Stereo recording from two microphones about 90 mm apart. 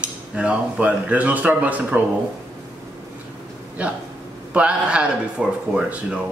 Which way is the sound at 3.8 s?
15° right (ahead or behind).